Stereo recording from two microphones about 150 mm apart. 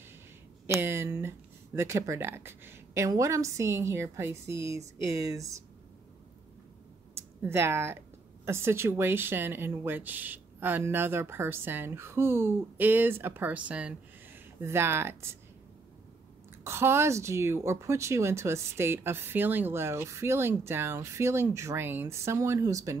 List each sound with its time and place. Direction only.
0.7 s speech: 15° right (ahead or behind)
7.4 s speech: 15° right (ahead or behind)
16.6 s speech: 15° right (ahead or behind)